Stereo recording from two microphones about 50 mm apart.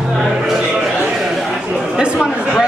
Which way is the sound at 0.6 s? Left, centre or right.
Right.